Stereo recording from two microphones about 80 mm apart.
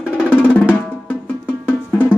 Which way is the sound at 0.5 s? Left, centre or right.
Left.